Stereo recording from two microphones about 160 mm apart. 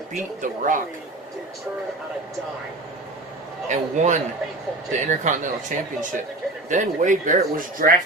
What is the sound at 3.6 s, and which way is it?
Speech, 50° right (ahead or behind).